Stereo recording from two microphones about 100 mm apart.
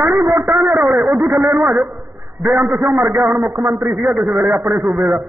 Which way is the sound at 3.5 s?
25° right (ahead or behind).